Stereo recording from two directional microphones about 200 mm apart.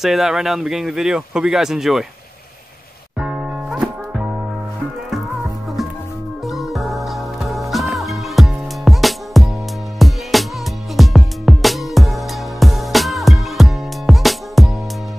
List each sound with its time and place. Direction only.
0.0 s speech: centre (ahead or behind)
3.2 s music: 5° right (ahead or behind)
6.4 s music: centre (ahead or behind)